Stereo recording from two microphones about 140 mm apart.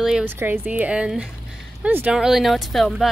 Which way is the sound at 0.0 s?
10° right (ahead or behind).